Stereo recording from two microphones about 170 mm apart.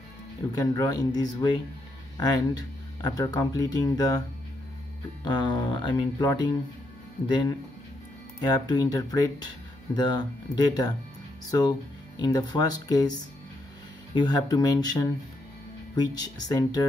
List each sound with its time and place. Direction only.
0.5 s speech: 20° left (ahead or behind)
5.2 s speech: 25° left (ahead or behind)
12.2 s speech: 25° left (ahead or behind)
14.1 s speech: 25° left (ahead or behind)